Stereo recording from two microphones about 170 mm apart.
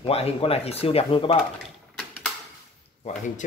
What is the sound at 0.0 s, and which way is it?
Speech, 35° left (ahead or behind).